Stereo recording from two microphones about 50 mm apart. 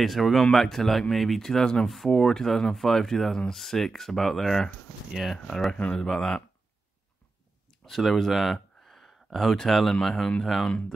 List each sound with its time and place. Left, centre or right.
0.0 s speech: centre
5.5 s speech: centre
5.8 s speech: left
6.0 s speech: centre
7.8 s speech: centre